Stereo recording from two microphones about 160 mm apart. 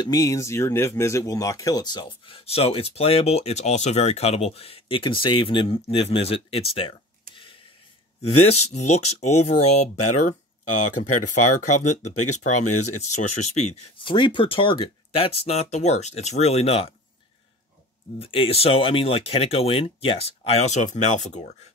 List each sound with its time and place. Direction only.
0.0 s speech: 20° left (ahead or behind)
8.2 s speech: 45° left (ahead or behind)
12.0 s speech: 45° left (ahead or behind)
18.2 s speech: 35° left (ahead or behind)